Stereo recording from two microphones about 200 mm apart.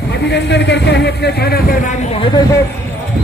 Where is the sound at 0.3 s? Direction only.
60° left (ahead or behind).